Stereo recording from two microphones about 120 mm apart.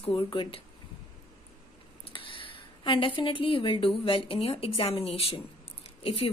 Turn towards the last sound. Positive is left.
turn(degrees=55)  # may be behind; listen again after turning